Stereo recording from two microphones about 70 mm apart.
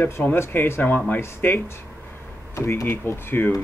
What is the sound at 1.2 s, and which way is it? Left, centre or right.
Speech, left.